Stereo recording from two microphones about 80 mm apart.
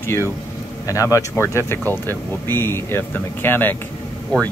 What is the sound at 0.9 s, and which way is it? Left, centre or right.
Speech, left.